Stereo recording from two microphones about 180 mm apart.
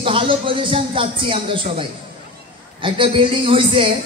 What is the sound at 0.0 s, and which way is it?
Music, 30° right (ahead or behind).